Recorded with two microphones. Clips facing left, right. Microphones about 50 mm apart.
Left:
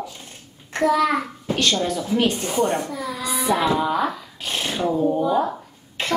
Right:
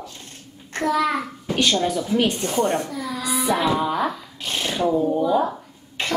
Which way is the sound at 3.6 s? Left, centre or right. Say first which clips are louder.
Left 1 dB; centre.